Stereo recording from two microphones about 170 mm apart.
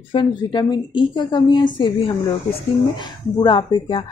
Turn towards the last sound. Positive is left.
turn(degrees=30)  # may be behind; listen again after turning